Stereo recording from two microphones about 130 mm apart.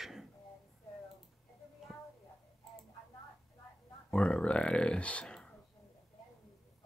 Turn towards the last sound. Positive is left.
turn(degrees=5)  # may be behind; listen again after turning